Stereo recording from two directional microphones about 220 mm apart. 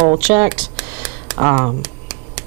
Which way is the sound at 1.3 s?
20° right (ahead or behind).